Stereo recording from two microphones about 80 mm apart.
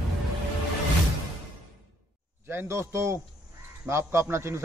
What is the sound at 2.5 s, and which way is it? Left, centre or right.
A man's voice, right.